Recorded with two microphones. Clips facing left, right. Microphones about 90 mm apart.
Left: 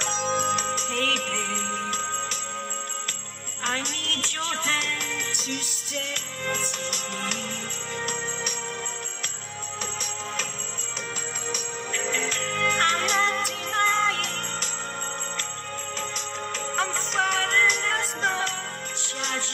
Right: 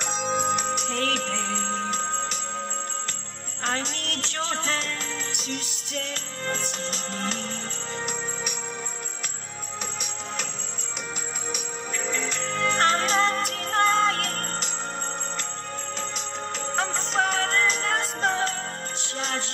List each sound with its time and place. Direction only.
0.0 s music: 10° right (ahead or behind)
3.6 s music: 25° right (ahead or behind)
5.9 s music: 30° right (ahead or behind)
12.1 s music: 15° right (ahead or behind); by 14.4 s 40° right (ahead or behind)
16.7 s music: 25° right (ahead or behind)